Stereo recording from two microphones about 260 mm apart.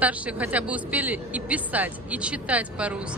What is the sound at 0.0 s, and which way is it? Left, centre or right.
Speech, centre.